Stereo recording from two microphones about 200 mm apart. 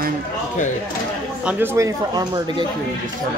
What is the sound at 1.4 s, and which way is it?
Speech, 10° right (ahead or behind).